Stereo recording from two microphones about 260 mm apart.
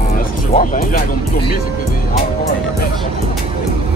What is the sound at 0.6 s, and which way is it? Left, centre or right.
Speech, left.